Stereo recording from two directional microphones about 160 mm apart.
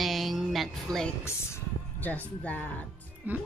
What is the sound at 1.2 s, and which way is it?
Music, 15° left (ahead or behind).